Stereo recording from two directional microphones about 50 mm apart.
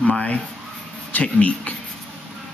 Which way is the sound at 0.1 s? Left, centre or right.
Left.